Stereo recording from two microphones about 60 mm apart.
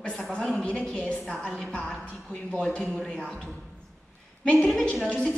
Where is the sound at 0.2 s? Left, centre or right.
Centre.